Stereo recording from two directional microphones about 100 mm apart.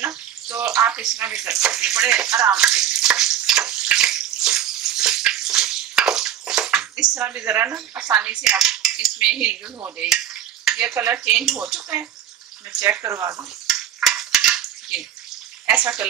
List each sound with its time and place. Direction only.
0.0 s bathtub: 15° right (ahead or behind)
0.8 s speech: 10° right (ahead or behind)
2.5 s frying: 10° right (ahead or behind)
7.2 s speech: 20° right (ahead or behind)
10.0 s a sound: 10° right (ahead or behind)
10.8 s speech: 15° right (ahead or behind)
13.0 s speech: 30° right (ahead or behind)
13.7 s stir: 5° right (ahead or behind)
14.3 s cutlery: 5° right (ahead or behind)
15.7 s speech: 15° right (ahead or behind)